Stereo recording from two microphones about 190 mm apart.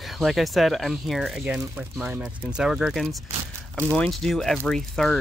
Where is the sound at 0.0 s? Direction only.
Centre (ahead or behind).